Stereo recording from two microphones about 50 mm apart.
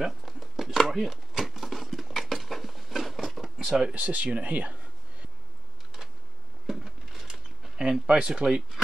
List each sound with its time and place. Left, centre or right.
0.0 s chopping: centre
3.9 s speech: right
6.7 s a sound: centre